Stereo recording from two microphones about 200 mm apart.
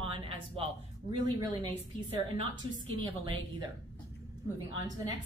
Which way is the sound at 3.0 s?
25° right (ahead or behind).